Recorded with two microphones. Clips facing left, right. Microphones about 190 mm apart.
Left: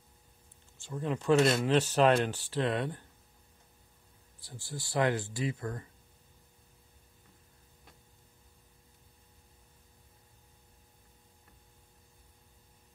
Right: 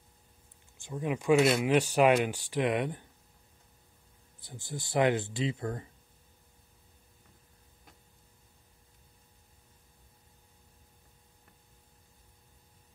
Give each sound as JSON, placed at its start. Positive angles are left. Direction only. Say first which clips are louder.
{"t": 0.7, "sound": "speech", "louder": "right 1 dB", "side_deg": -15}
{"t": 4.4, "sound": "speech", "louder": "right 2 dB", "side_deg": -20}